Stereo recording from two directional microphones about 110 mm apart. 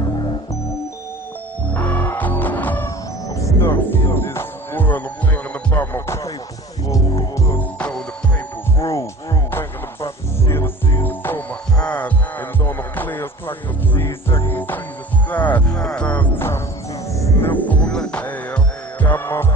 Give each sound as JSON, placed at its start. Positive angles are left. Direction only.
{"t": 1.7, "sound": "music", "side_deg": 15}
{"t": 3.3, "sound": "music", "side_deg": 30}
{"t": 7.5, "sound": "music", "side_deg": 10}
{"t": 8.7, "sound": "music", "side_deg": 25}
{"t": 17.5, "sound": "music", "side_deg": 15}